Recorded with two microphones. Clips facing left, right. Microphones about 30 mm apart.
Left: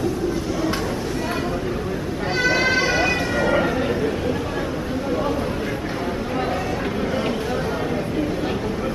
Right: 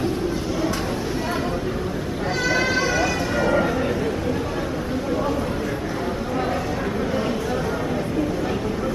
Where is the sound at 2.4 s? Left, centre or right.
Left.